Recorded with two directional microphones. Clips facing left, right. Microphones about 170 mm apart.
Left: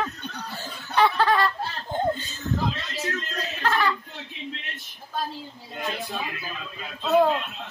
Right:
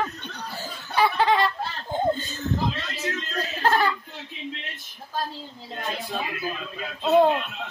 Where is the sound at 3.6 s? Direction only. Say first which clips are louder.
Right 2 dB; 35° right (ahead or behind).